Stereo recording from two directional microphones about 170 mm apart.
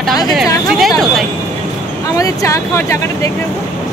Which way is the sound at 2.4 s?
15° left (ahead or behind).